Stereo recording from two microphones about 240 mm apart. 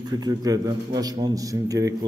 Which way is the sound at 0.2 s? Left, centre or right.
Centre.